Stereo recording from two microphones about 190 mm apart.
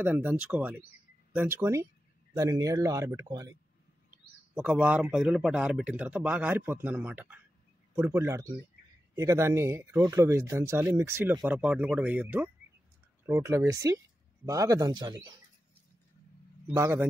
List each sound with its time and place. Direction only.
0.0 s a man's voice: 10° right (ahead or behind)
4.6 s a man's voice: 5° right (ahead or behind)
16.7 s a man's voice: 15° right (ahead or behind)